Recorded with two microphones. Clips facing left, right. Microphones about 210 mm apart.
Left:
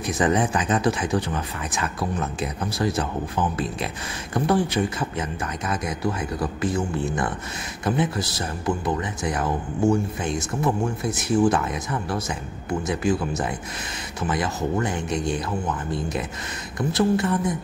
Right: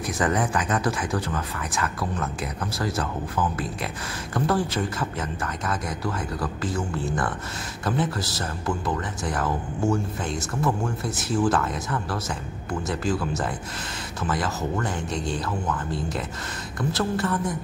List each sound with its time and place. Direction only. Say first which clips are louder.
0.0 s speech: left 3 dB; 20° left (ahead or behind)